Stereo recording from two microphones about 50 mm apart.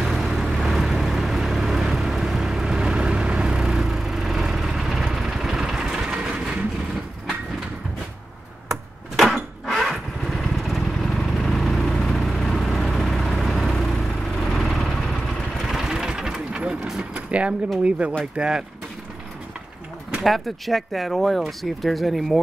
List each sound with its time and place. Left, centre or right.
0.0 s vehicle: centre
6.1 s train: right
8.6 s vehicle: centre
15.7 s vehicle: centre
16.8 s a sound: centre
17.3 s a sound: right
17.8 s speech: right
20.2 s speech: centre